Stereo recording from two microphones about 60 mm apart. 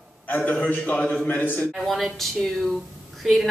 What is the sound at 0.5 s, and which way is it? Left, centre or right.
A man's voice, left.